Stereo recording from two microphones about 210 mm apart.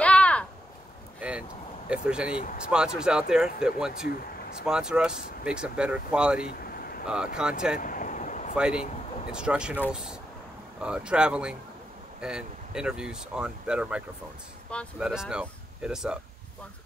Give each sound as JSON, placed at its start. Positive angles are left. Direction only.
{"t": 0.0, "sound": "a sound", "side_deg": 5}
{"t": 1.9, "sound": "speech", "side_deg": -5}
{"t": 6.6, "sound": "a sound", "side_deg": 45}
{"t": 7.3, "sound": "speech", "side_deg": -5}
{"t": 7.8, "sound": "vehicle", "side_deg": 40}
{"t": 8.5, "sound": "speech", "side_deg": -5}